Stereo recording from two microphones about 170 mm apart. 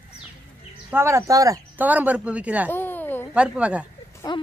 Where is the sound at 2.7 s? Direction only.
10° left (ahead or behind).